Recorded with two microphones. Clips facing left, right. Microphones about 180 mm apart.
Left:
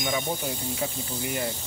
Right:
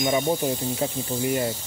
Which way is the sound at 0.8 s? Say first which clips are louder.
Right 3 dB; 30° right (ahead or behind).